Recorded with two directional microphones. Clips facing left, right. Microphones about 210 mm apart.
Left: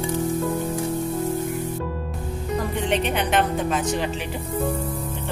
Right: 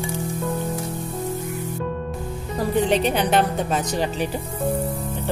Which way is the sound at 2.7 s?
35° right (ahead or behind).